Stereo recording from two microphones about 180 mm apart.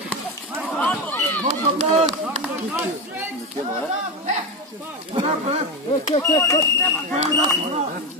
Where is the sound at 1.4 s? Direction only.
40° right (ahead or behind).